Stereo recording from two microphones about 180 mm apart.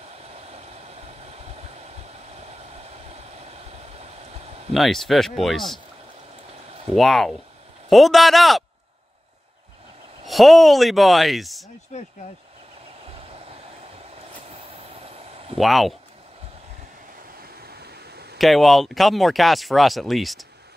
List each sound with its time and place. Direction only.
0.3 s vehicle: 35° right (ahead or behind)
2.3 s a sound: 35° right (ahead or behind)
4.7 s speech: centre (ahead or behind)
7.0 s speech: centre (ahead or behind)
10.2 s speech: centre (ahead or behind)
11.9 s speech: 40° left (ahead or behind)
14.5 s a sound: 35° right (ahead or behind)
15.5 s speech: centre (ahead or behind)
17.4 s a sound: 60° right (ahead or behind)
18.4 s speech: centre (ahead or behind)